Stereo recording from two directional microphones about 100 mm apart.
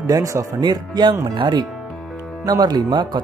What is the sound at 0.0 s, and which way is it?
Speech, 35° right (ahead or behind).